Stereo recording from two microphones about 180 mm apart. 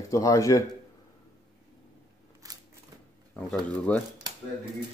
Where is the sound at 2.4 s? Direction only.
20° right (ahead or behind).